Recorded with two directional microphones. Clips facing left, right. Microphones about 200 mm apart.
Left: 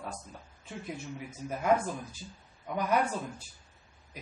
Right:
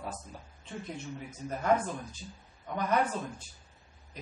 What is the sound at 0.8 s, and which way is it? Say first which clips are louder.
Speech: left 3 dB; 10° left (ahead or behind).